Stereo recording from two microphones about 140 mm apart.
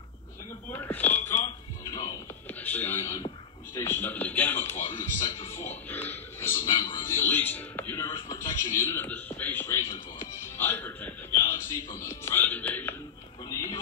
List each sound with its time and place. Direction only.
0.7 s smoke detector: 15° left (ahead or behind)
1.4 s music: 35° left (ahead or behind)
2.6 s speech: 15° left (ahead or behind)
5.2 s a sound: 20° left (ahead or behind)
6.6 s music: 35° left (ahead or behind)
7.1 s music: 15° left (ahead or behind)
7.9 s a sound: 20° left (ahead or behind)
10.4 s music: 15° left (ahead or behind)